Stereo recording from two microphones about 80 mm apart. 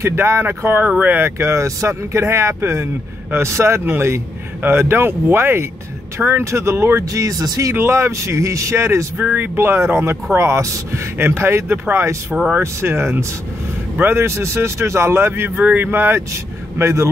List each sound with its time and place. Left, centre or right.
0.0 s speech: right
7.7 s speech: right
9.2 s speech: right